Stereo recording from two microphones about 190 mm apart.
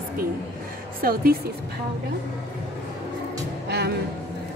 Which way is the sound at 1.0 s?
50° right (ahead or behind).